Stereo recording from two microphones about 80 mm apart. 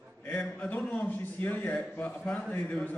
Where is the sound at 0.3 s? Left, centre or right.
Centre.